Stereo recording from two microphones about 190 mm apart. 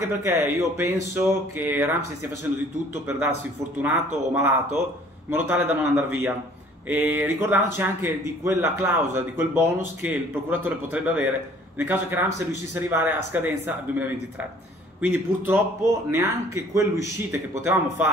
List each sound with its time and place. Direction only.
0.0 s speech: 15° right (ahead or behind)
2.9 s speech: 10° right (ahead or behind)
16.7 s speech: 15° right (ahead or behind)